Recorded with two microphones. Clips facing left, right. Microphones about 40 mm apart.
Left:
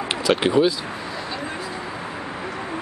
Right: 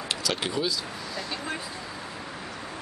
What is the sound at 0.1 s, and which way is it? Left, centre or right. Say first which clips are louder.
Speech: left 11 dB; left.